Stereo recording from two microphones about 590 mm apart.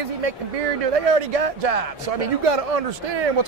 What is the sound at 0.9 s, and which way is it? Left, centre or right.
A man's voice, right.